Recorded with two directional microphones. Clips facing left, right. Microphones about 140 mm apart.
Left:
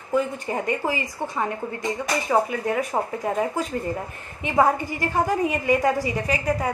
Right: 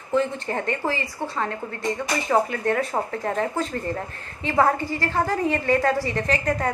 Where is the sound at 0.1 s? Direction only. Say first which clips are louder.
Right 1 dB; 10° left (ahead or behind).